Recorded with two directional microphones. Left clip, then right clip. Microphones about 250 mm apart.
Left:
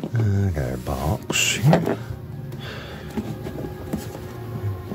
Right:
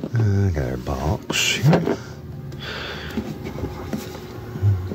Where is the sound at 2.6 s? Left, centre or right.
Centre.